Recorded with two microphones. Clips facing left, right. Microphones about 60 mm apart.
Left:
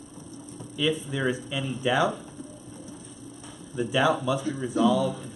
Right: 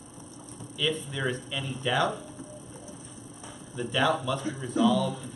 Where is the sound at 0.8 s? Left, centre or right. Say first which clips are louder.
Left 3 dB; centre.